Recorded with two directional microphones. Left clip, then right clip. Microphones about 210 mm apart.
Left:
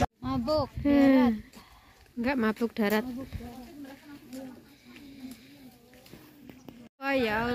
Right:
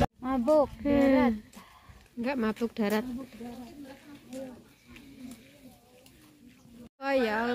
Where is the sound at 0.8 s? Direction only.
10° left (ahead or behind).